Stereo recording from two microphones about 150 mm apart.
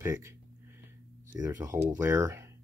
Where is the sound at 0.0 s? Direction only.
20° right (ahead or behind).